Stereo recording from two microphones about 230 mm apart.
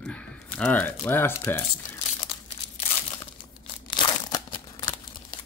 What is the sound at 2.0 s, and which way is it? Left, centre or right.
Crumpling, left.